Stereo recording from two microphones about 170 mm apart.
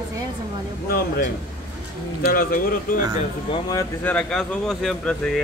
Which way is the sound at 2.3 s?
60° left (ahead or behind).